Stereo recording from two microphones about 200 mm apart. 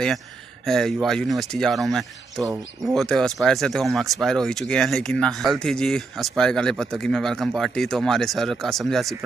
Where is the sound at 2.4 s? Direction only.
15° right (ahead or behind).